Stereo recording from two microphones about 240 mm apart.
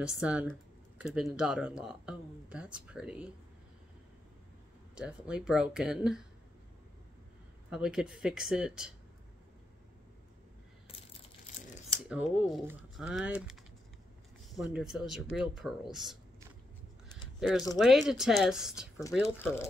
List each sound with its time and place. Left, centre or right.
0.0 s speech: centre
4.9 s speech: centre
7.7 s speech: centre
12.0 s speech: centre
14.6 s speech: centre
17.4 s speech: centre
19.2 s speech: centre